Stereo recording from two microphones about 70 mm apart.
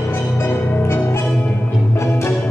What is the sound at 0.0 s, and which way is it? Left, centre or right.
Music, left.